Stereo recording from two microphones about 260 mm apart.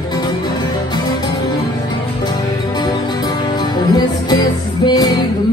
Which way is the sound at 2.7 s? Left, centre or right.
Centre.